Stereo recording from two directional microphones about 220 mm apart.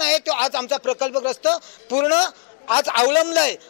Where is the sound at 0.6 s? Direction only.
25° left (ahead or behind).